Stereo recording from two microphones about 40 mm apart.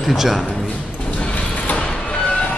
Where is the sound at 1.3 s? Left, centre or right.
Left.